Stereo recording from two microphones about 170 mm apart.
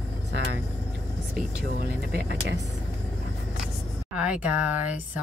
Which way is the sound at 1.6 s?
70° right (ahead or behind).